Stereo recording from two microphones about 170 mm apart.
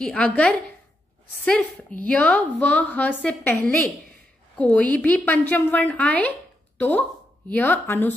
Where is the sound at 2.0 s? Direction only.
5° left (ahead or behind).